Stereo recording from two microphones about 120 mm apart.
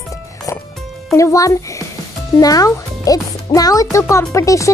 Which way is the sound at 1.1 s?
25° left (ahead or behind).